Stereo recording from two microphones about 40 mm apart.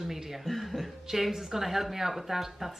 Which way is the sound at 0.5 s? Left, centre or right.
Centre.